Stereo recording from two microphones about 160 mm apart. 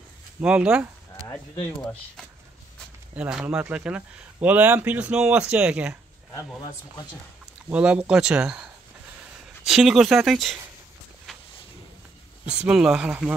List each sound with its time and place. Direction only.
0.4 s speech: 5° right (ahead or behind)
3.2 s speech: 5° right (ahead or behind)
7.7 s speech: 10° right (ahead or behind)
9.7 s speech: centre (ahead or behind)
11.3 s a sound: centre (ahead or behind)
12.5 s speech: 5° right (ahead or behind)